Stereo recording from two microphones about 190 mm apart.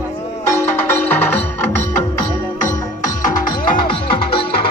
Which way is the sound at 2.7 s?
45° left (ahead or behind).